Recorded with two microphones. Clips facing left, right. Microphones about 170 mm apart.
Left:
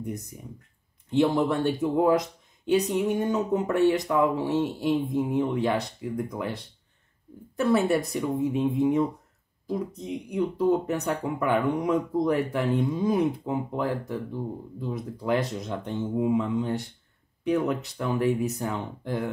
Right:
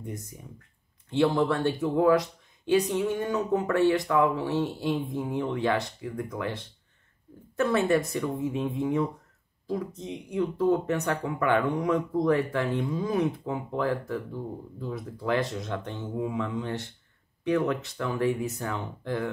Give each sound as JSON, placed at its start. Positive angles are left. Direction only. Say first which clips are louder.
{"t": 0.0, "sound": "speech", "louder": "left 4 dB", "side_deg": 15}